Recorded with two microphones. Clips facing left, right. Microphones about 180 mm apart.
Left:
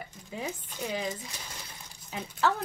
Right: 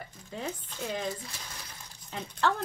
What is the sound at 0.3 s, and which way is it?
A woman's voice, 10° left (ahead or behind).